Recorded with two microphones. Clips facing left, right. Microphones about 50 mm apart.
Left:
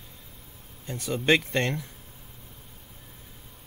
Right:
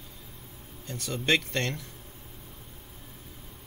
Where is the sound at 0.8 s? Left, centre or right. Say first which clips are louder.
Left 4 dB; centre.